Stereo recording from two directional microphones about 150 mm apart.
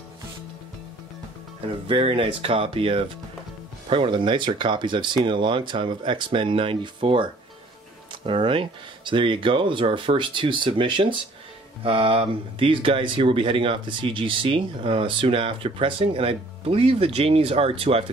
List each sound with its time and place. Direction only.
1.9 s speech: 35° right (ahead or behind)